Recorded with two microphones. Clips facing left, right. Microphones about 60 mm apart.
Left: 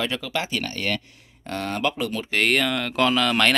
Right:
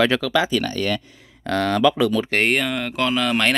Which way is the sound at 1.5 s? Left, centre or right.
Right.